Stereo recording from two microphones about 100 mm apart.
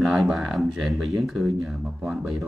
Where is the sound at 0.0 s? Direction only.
5° right (ahead or behind).